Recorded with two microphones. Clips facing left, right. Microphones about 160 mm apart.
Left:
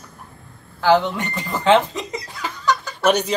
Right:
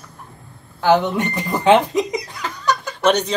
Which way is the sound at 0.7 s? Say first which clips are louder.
Right 1 dB; 15° right (ahead or behind).